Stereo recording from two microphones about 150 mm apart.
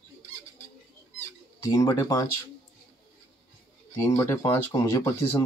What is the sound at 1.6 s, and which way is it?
Speech, 20° left (ahead or behind).